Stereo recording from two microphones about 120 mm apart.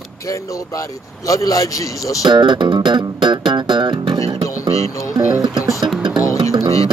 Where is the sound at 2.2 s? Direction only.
40° right (ahead or behind).